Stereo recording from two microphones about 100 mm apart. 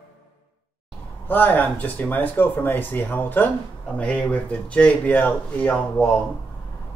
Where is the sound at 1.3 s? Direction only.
15° left (ahead or behind).